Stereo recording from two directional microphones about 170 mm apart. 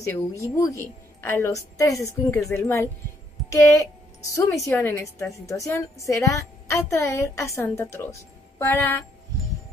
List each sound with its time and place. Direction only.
0.0 s a woman's voice: 15° left (ahead or behind)
4.3 s a woman's voice: 20° left (ahead or behind)